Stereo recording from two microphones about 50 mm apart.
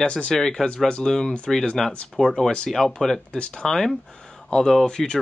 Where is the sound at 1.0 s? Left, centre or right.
Centre.